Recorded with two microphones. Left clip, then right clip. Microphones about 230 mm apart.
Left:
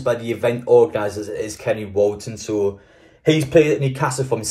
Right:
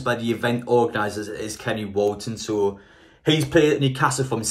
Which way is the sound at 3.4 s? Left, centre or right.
Right.